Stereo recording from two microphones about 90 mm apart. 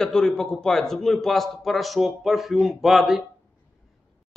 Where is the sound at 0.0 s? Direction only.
5° left (ahead or behind).